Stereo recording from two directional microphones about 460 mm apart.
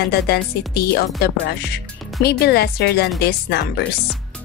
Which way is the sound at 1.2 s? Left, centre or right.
Left.